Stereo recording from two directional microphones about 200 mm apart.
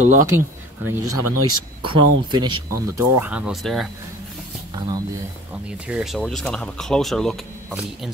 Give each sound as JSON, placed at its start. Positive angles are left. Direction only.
{"t": 0.0, "sound": "speech", "side_deg": -40}
{"t": 1.0, "sound": "speech", "side_deg": -90}
{"t": 1.8, "sound": "speech", "side_deg": -25}
{"t": 4.7, "sound": "speech", "side_deg": -20}
{"t": 5.5, "sound": "speech", "side_deg": -5}